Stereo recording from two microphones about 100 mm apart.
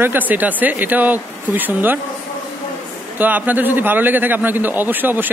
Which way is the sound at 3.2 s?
15° right (ahead or behind).